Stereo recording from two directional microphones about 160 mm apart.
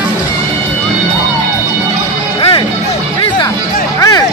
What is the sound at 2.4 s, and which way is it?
Music, 35° left (ahead or behind).